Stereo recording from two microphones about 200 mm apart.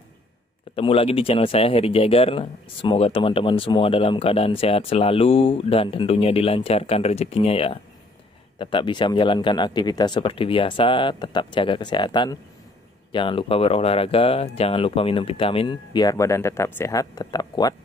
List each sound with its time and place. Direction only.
0.7 s speech: 30° left (ahead or behind)